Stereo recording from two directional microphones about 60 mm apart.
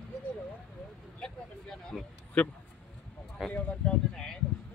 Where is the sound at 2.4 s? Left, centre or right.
Centre.